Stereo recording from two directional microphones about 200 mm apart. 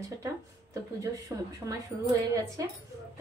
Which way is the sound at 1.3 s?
10° right (ahead or behind).